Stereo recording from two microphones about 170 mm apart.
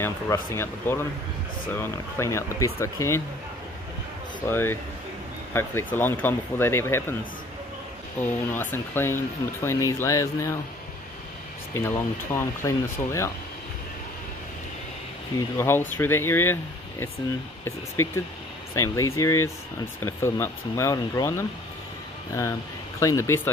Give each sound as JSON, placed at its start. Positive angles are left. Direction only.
{"t": 0.0, "sound": "speech", "side_deg": 15}
{"t": 4.5, "sound": "speech", "side_deg": 15}
{"t": 8.2, "sound": "speech", "side_deg": 10}
{"t": 11.7, "sound": "speech", "side_deg": 15}
{"t": 15.5, "sound": "speech", "side_deg": 15}
{"t": 17.6, "sound": "speech", "side_deg": 15}